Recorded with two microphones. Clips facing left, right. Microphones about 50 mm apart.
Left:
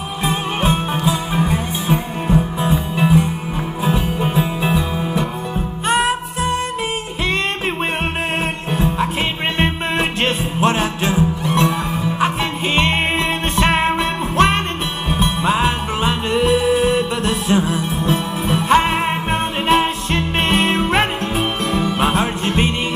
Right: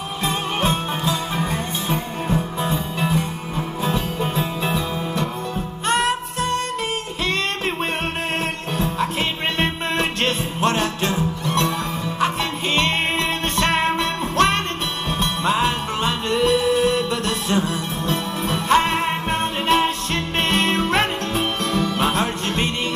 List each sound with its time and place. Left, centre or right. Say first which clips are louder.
0.2 s music: left 2 dB; centre
8.7 s music: left 3 dB; centre
13.6 s music: left 3 dB; centre